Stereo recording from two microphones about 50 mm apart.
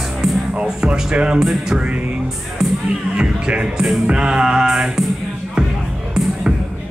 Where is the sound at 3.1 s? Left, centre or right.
Centre.